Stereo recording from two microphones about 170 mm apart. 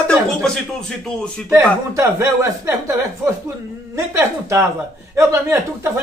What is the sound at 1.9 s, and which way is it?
Speech, 15° right (ahead or behind).